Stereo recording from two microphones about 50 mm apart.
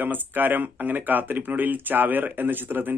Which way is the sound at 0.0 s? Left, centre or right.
Right.